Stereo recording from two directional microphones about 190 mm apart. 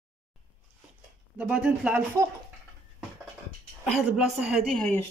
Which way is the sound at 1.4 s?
5° right (ahead or behind).